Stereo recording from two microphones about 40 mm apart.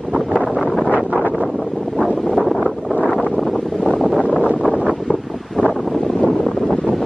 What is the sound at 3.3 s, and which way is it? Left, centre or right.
Wind noise, centre.